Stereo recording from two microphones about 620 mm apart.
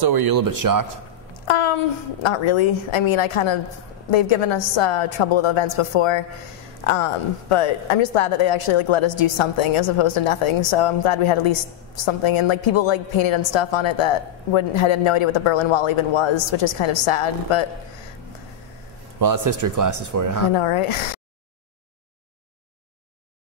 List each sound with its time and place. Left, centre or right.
0.0 s speech: right
1.5 s a woman's voice: left
19.1 s speech: right
20.5 s a woman's voice: left